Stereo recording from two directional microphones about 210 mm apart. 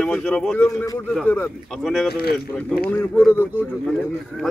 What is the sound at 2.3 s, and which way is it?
A man's voice, 5° left (ahead or behind).